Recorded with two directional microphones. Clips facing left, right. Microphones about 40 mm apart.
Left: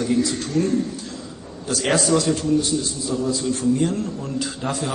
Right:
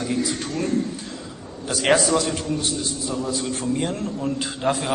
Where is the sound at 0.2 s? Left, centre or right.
Right.